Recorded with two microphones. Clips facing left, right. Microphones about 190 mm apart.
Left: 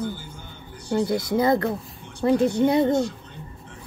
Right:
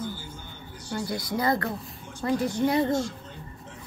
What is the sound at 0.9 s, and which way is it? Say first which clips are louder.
Speech: left 8 dB; 20° left (ahead or behind).